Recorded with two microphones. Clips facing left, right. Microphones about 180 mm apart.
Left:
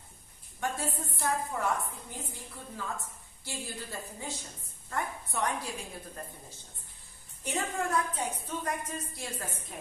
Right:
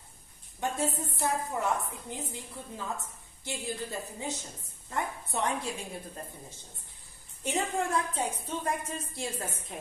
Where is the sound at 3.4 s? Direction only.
20° right (ahead or behind).